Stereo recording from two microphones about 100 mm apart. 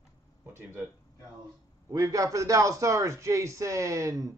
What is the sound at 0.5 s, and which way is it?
Speech, 20° right (ahead or behind).